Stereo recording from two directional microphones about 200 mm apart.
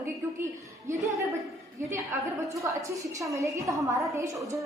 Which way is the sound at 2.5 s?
15° right (ahead or behind).